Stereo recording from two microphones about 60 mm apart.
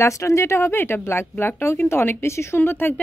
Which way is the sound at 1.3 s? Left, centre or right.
Left.